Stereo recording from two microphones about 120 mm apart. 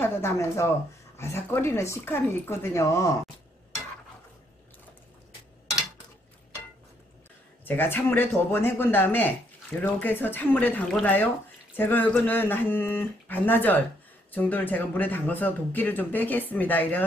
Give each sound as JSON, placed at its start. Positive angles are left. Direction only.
{"t": 0.0, "sound": "speech", "side_deg": 20}
{"t": 7.6, "sound": "speech", "side_deg": 15}